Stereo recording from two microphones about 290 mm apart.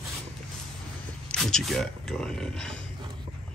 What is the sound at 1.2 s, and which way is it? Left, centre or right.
Speech, centre.